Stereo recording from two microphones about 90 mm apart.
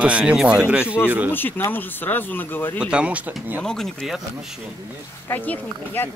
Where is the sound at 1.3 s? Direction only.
20° left (ahead or behind).